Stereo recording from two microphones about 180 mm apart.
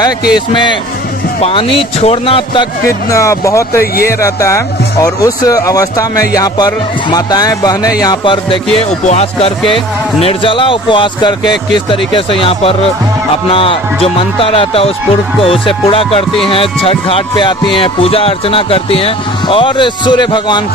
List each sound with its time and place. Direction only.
0.3 s music: 25° left (ahead or behind)
1.4 s speech: 30° left (ahead or behind)
2.9 s speech: 15° left (ahead or behind)
3.8 s speech: 55° left (ahead or behind)
4.2 s music: 15° left (ahead or behind)
8.7 s speech: 35° left (ahead or behind)
10.2 s music: 30° left (ahead or behind)
13.5 s speech: 30° left (ahead or behind)
16.4 s music: 30° left (ahead or behind)